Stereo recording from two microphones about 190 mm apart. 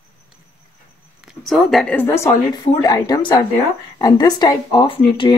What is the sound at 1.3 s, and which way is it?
Speech, centre (ahead or behind).